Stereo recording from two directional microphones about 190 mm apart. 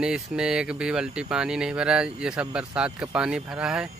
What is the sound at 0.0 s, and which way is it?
Speech, 5° right (ahead or behind).